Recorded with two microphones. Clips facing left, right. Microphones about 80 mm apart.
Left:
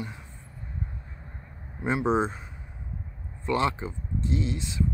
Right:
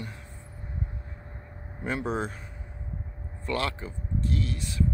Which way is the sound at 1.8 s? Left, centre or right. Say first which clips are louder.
Left 5 dB; left.